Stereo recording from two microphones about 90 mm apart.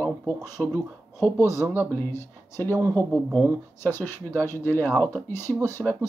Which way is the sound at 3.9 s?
20° left (ahead or behind).